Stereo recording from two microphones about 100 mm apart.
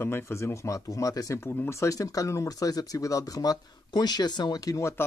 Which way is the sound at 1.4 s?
25° left (ahead or behind).